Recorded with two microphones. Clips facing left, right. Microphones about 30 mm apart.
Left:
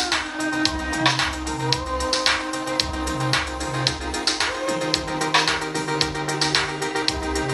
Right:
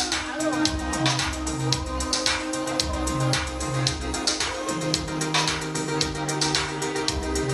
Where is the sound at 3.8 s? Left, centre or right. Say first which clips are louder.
Left 3 dB; left.